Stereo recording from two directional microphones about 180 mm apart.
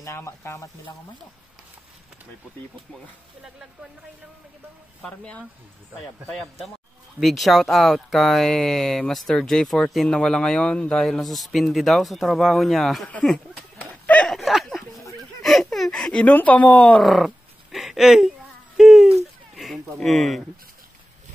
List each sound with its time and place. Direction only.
0.0 s speech: 15° left (ahead or behind)
5.0 s a man's voice: 5° left (ahead or behind)
15.4 s a sound: centre (ahead or behind)
20.0 s speech: centre (ahead or behind)